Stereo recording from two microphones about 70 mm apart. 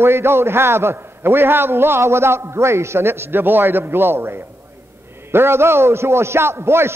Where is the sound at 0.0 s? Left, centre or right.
Right.